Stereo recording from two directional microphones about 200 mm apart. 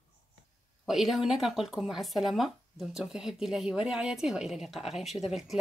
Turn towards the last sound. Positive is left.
turn(degrees=0)  # may be behind; listen again after turning